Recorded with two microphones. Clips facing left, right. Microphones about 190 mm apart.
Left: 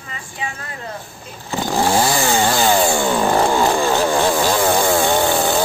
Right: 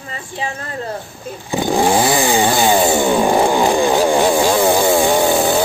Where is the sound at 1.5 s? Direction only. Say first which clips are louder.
Right 3 dB; 15° right (ahead or behind).